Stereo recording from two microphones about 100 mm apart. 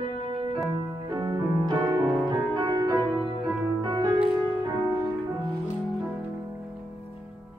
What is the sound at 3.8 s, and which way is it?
Music, 40° right (ahead or behind).